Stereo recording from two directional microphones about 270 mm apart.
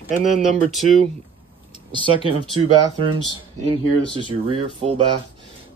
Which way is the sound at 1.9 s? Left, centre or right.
Centre.